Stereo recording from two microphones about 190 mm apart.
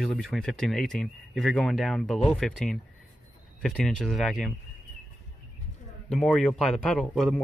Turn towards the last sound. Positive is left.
turn(degrees=5)  # may be behind; listen again after turning